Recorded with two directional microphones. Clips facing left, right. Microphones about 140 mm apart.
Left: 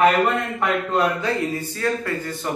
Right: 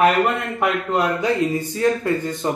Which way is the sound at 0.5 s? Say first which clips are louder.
Right 1 dB; 15° right (ahead or behind).